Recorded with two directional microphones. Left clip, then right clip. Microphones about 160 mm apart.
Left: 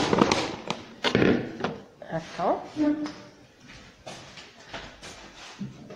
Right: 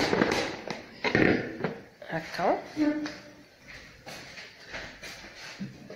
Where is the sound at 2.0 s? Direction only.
15° right (ahead or behind).